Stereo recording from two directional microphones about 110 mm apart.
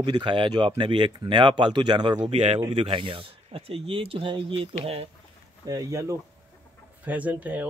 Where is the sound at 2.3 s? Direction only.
60° right (ahead or behind).